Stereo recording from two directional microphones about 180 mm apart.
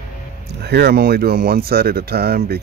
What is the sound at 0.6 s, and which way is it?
Speech, 65° right (ahead or behind).